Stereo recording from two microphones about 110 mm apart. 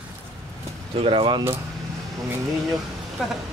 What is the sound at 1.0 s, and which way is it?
Speech, 55° right (ahead or behind).